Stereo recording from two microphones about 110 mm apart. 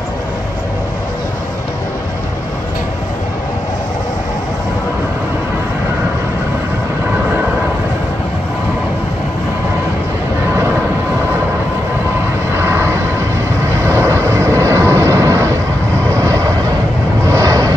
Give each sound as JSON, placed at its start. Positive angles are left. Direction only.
{"t": 12.5, "sound": "vehicle", "side_deg": -25}